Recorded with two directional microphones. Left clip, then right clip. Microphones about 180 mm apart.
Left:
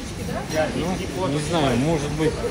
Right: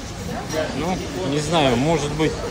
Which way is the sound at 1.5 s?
10° right (ahead or behind).